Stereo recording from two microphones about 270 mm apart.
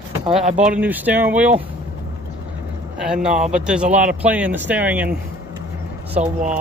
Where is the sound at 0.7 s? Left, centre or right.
Centre.